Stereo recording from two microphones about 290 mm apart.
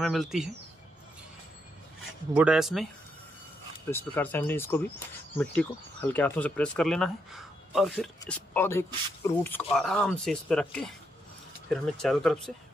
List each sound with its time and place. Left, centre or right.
0.0 s speech: centre
2.3 s speech: centre
3.9 s speech: centre